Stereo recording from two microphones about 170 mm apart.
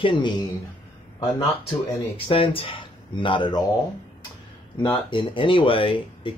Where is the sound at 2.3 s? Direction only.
30° left (ahead or behind).